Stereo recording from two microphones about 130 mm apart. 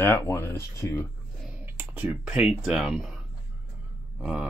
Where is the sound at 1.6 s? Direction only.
15° right (ahead or behind).